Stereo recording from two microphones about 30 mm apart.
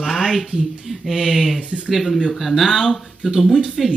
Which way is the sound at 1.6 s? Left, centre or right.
Right.